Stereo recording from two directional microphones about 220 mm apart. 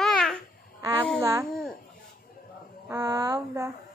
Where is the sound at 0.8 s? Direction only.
10° right (ahead or behind).